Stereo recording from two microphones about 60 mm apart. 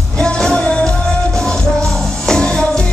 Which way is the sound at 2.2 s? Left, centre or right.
Centre.